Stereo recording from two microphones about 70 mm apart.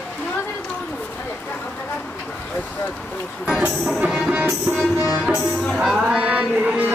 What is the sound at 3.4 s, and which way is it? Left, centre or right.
Music, centre.